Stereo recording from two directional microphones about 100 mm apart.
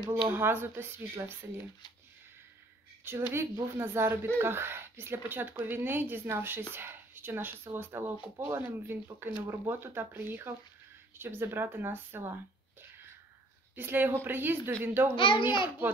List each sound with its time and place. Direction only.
0.3 s a woman's voice: 20° right (ahead or behind)
3.1 s a woman's voice: 25° right (ahead or behind)
13.7 s a woman's voice: 20° right (ahead or behind)
15.1 s a child's voice: 55° left (ahead or behind)